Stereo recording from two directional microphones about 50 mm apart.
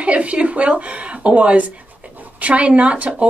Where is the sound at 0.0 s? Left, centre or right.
Right.